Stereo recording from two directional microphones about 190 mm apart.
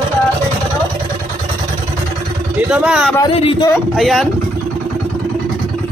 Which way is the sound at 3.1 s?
25° left (ahead or behind).